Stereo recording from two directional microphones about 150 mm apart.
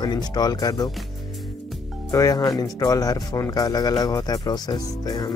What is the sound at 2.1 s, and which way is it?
Speech, 20° left (ahead or behind).